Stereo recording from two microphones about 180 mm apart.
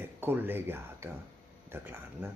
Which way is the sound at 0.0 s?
10° right (ahead or behind).